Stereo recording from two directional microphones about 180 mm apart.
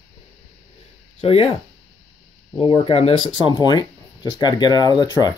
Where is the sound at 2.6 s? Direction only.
30° left (ahead or behind).